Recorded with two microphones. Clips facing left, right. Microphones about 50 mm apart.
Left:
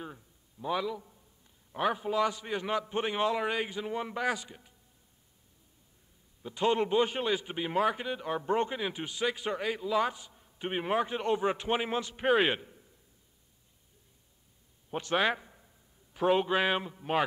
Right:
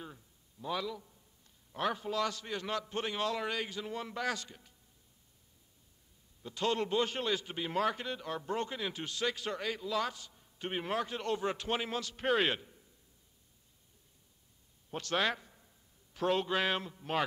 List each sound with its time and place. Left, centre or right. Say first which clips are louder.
0.0 s a sound: left 5 dB; centre
1.7 s a man's voice: left 4 dB; centre
6.4 s a man's voice: left 5 dB; centre
14.9 s a man's voice: left 4 dB; centre